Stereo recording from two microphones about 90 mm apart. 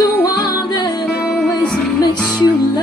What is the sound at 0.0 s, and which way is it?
Music, 45° left (ahead or behind).